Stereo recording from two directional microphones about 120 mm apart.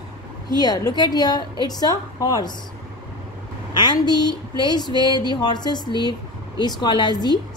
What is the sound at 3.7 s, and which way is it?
A woman's voice, 40° left (ahead or behind).